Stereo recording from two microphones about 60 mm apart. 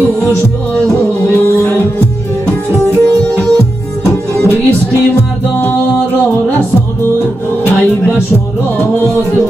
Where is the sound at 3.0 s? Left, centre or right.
Centre.